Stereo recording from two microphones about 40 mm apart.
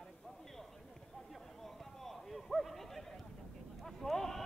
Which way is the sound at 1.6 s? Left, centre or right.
Centre.